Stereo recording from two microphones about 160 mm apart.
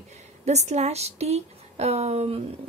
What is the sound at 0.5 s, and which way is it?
A woman's voice, 45° right (ahead or behind).